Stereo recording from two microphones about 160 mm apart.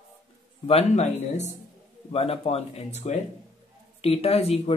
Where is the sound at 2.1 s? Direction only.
40° left (ahead or behind).